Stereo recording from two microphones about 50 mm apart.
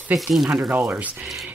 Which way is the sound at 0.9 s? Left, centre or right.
Right.